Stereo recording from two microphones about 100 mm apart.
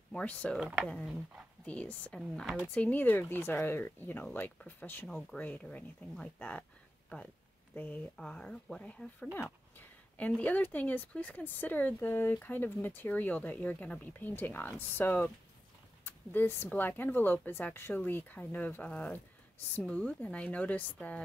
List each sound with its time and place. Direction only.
0.1 s speech: 10° left (ahead or behind)
0.6 s speech: 15° right (ahead or behind)
1.6 s a woman's voice: 10° left (ahead or behind)
2.5 s speech: 10° left (ahead or behind)
5.0 s speech: 5° left (ahead or behind)
5.4 s speech: 15° left (ahead or behind)
7.7 s speech: 15° left (ahead or behind)
8.2 s speech: 5° left (ahead or behind)
9.3 s speech: 25° left (ahead or behind)
10.1 s speech: 15° left (ahead or behind)